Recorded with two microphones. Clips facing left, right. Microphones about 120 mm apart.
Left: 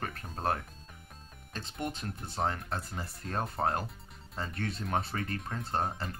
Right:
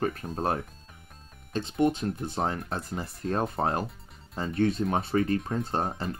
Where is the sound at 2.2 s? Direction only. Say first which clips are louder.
Even; 15° right (ahead or behind).